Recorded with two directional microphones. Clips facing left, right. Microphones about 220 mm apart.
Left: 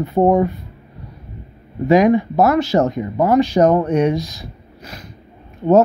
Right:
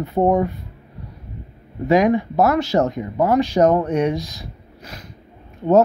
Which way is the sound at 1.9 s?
5° left (ahead or behind).